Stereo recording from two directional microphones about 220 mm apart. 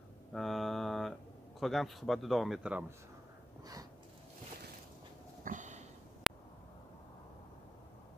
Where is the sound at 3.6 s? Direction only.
15° right (ahead or behind).